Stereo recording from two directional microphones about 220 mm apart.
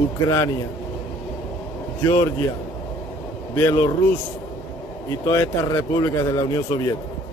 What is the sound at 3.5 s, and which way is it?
Speech, 15° left (ahead or behind).